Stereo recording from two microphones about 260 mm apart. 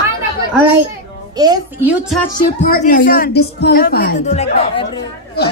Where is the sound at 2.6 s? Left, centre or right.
Left.